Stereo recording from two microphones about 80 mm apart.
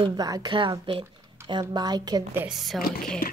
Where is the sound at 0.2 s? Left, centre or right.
Right.